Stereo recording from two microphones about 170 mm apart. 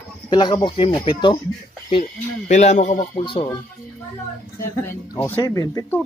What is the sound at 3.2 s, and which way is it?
Speech, 30° left (ahead or behind).